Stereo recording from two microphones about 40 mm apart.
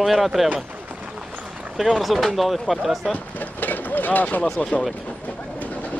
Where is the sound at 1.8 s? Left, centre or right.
Centre.